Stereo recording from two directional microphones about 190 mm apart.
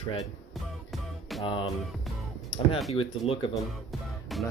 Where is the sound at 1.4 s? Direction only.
25° left (ahead or behind).